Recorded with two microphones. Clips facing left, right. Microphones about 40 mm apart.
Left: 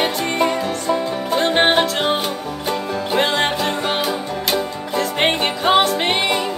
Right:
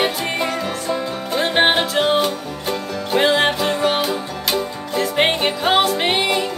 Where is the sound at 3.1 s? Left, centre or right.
Centre.